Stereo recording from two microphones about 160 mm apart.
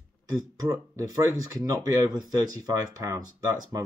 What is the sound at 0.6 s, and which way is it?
Speech, 20° right (ahead or behind).